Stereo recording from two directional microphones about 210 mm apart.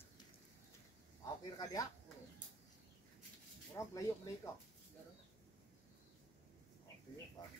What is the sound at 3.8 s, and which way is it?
Speech, 15° left (ahead or behind).